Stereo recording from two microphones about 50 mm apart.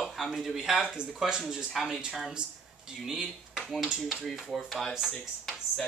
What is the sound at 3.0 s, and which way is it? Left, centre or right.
Speech, centre.